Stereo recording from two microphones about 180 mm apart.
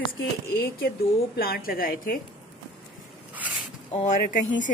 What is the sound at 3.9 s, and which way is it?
Speech, 40° left (ahead or behind).